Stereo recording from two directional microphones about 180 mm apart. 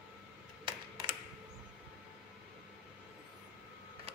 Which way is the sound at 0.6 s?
25° right (ahead or behind).